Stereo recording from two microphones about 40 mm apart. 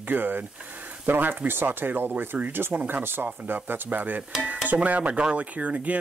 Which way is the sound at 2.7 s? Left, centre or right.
Right.